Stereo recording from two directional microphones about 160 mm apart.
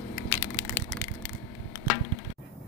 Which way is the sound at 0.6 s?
10° left (ahead or behind).